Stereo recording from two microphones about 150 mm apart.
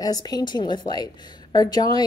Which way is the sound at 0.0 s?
25° left (ahead or behind).